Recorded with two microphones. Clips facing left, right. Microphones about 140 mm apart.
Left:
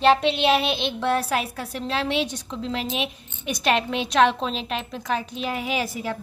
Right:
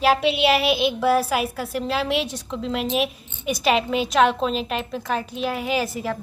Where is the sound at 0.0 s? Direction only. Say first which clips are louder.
Even; 5° right (ahead or behind).